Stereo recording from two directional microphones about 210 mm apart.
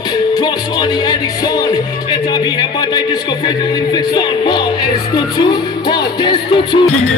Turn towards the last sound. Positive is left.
turn(degrees=20)  # may be behind; listen again after turning